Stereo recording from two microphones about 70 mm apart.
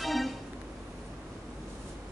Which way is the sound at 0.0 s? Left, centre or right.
Centre.